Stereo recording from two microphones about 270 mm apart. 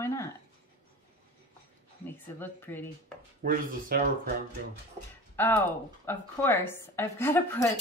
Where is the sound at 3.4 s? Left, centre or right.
Right.